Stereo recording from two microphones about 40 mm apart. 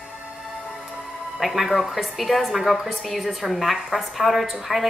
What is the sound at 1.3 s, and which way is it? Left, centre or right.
A woman's voice, centre.